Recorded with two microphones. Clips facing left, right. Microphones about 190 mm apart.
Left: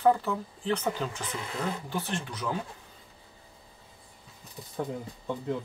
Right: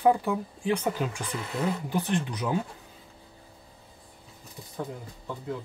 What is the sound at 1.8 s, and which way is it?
Speech, 15° right (ahead or behind).